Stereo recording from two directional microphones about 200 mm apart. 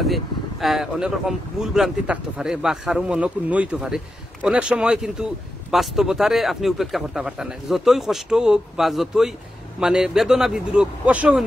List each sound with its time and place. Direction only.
0.0 s speech: centre (ahead or behind)